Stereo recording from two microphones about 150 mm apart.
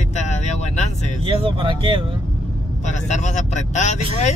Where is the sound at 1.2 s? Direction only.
35° right (ahead or behind).